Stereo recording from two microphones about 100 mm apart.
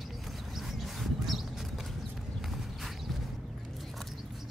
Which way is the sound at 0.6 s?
Centre (ahead or behind).